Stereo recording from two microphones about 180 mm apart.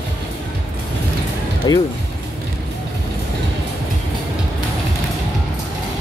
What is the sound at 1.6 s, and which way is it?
Speech, 20° left (ahead or behind).